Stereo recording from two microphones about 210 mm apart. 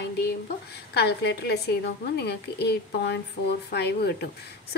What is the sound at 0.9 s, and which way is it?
A woman's voice, 50° left (ahead or behind).